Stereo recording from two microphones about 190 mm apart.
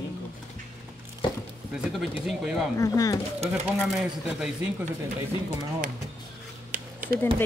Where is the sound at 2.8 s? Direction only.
20° left (ahead or behind).